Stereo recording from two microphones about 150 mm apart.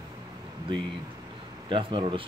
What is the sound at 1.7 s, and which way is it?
Speech, 35° right (ahead or behind).